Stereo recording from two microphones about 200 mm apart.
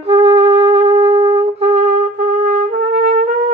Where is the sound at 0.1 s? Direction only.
30° right (ahead or behind).